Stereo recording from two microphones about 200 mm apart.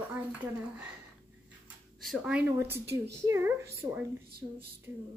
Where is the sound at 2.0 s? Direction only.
Centre (ahead or behind).